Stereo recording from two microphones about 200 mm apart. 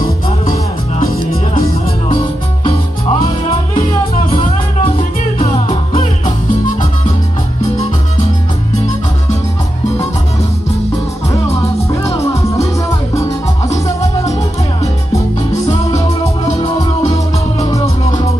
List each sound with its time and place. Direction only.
2.1 s music: 25° left (ahead or behind)
3.7 s music: 40° left (ahead or behind)
12.1 s music: 15° left (ahead or behind)
16.4 s music: 30° left (ahead or behind)